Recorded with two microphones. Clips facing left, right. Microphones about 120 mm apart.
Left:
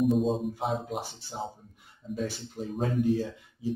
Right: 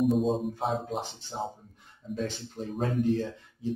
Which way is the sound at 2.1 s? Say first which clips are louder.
Even; 10° left (ahead or behind).